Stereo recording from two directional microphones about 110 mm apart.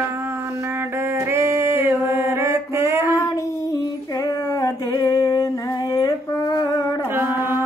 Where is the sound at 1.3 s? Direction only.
25° right (ahead or behind).